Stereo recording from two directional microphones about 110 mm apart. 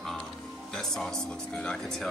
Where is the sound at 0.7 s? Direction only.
5° left (ahead or behind).